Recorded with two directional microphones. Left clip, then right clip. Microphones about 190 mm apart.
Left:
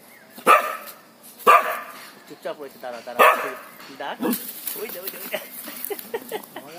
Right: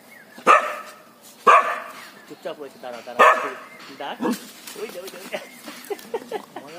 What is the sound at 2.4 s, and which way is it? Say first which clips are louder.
Speech: left 1 dB; 20° left (ahead or behind).